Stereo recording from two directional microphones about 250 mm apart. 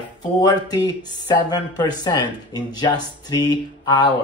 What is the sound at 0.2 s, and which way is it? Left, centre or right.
Speech, centre.